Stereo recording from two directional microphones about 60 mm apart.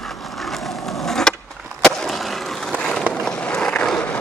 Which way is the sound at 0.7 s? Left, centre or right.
Left.